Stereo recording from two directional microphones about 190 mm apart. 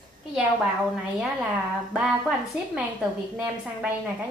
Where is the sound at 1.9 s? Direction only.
5° right (ahead or behind).